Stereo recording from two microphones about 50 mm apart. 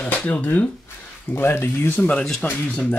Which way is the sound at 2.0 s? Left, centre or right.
Left.